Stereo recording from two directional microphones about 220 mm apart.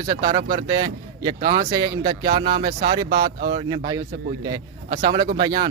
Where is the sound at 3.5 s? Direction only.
20° right (ahead or behind).